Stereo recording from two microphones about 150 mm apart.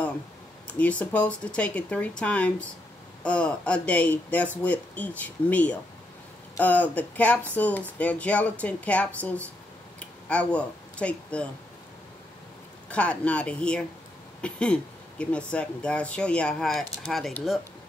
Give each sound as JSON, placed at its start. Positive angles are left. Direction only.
{"t": 0.7, "sound": "speech", "side_deg": 10}
{"t": 12.9, "sound": "speech", "side_deg": 10}